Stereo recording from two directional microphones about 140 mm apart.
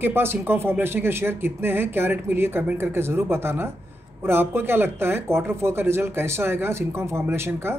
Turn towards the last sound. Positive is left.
turn(degrees=-15)  # may be behind; listen again after turning